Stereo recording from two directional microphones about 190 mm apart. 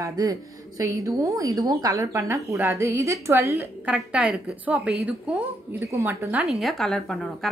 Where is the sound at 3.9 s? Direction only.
5° right (ahead or behind).